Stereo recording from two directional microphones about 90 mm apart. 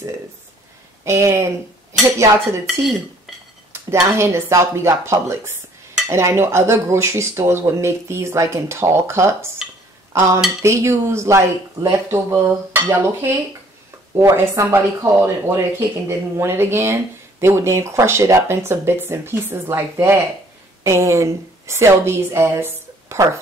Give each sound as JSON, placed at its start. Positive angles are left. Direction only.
{"t": 1.0, "sound": "dishes", "side_deg": -35}
{"t": 2.8, "sound": "speech", "side_deg": 0}
{"t": 3.7, "sound": "dishes", "side_deg": -30}
{"t": 12.9, "sound": "speech", "side_deg": -25}
{"t": 14.3, "sound": "dishes", "side_deg": -30}
{"t": 15.2, "sound": "a woman's voice", "side_deg": -30}